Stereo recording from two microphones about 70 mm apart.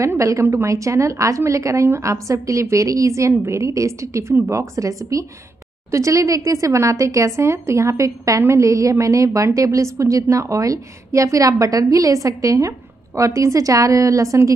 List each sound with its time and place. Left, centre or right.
0.0 s speech: right